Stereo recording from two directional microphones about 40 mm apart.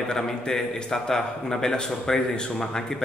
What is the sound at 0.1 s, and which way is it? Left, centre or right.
A man's voice, centre.